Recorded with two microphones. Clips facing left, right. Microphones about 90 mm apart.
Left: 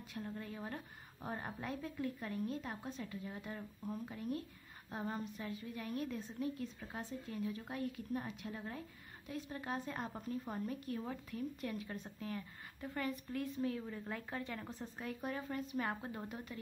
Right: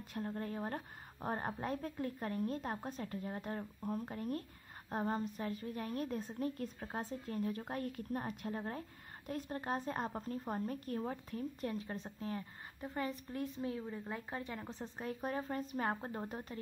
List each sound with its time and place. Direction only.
0.1 s a woman's voice: 40° right (ahead or behind); by 15.0 s 20° right (ahead or behind)
15.2 s a woman's voice: 35° right (ahead or behind)